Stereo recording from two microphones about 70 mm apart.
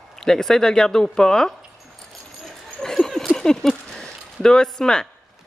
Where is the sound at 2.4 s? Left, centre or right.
Centre.